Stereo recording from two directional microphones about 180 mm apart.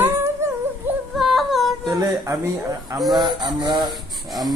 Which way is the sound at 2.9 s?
Centre (ahead or behind).